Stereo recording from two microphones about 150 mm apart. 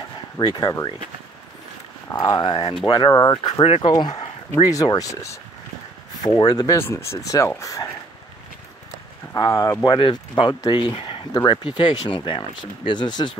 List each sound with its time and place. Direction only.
0.4 s speech: 30° left (ahead or behind)
2.1 s speech: 30° left (ahead or behind)
3.6 s speech: 40° left (ahead or behind)
3.9 s speech: 25° left (ahead or behind)
9.3 s speech: 25° left (ahead or behind)